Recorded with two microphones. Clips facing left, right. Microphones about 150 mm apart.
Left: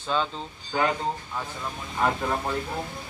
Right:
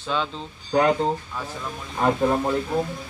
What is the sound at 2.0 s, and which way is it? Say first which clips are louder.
Speech: right 5 dB; 25° right (ahead or behind).